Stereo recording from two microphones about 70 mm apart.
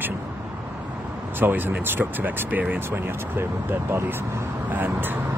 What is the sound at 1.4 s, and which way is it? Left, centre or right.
Speech, right.